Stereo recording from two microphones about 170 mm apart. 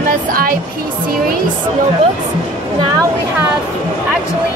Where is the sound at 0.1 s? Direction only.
60° right (ahead or behind).